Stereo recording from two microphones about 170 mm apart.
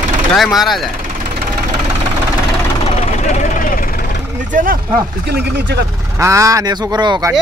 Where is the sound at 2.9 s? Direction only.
50° left (ahead or behind).